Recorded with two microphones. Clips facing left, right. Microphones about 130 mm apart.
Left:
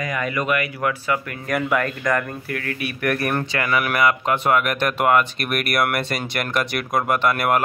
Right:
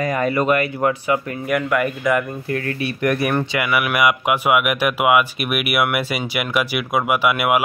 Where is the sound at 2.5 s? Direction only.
30° right (ahead or behind).